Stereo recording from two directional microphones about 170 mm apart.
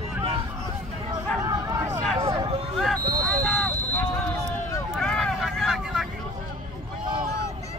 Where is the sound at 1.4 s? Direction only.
20° right (ahead or behind).